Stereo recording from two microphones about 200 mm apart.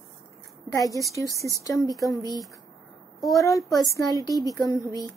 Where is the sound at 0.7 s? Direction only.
15° left (ahead or behind).